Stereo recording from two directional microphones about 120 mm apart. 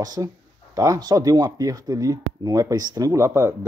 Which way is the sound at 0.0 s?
30° right (ahead or behind).